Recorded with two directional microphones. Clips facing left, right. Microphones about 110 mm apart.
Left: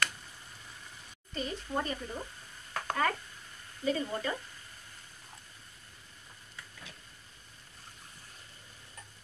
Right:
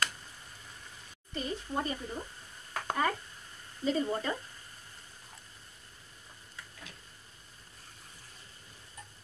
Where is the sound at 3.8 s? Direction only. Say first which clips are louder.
Right 2 dB; 30° right (ahead or behind).